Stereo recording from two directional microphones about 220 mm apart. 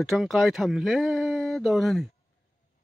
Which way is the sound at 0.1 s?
Centre (ahead or behind).